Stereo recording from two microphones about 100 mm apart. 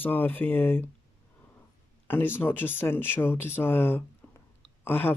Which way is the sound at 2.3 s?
20° left (ahead or behind).